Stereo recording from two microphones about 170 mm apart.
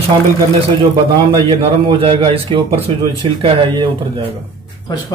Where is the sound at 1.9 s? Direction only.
30° right (ahead or behind).